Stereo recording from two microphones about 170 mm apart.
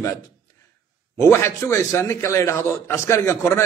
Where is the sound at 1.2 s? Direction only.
15° left (ahead or behind).